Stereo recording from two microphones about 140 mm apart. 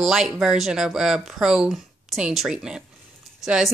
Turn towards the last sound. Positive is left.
turn(degrees=0)  # may be behind; listen again after turning